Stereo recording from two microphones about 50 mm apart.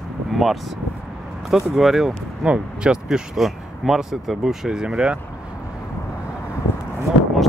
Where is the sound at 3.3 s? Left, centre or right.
Centre.